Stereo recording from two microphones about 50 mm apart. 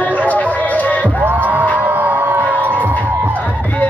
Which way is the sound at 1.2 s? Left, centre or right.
Right.